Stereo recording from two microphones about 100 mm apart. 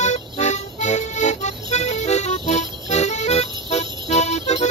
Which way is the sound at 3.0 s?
90° left.